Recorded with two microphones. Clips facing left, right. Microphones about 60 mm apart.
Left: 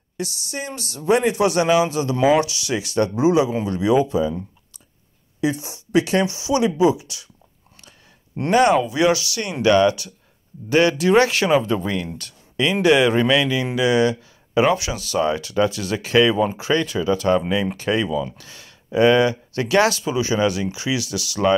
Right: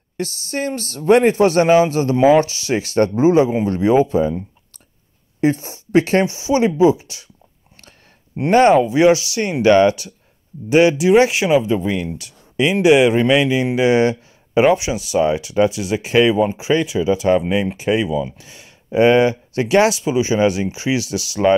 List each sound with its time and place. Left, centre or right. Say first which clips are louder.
0.2 s speech: right 6 dB; right
5.4 s speech: right 5 dB; right
8.5 s speech: right 4 dB; right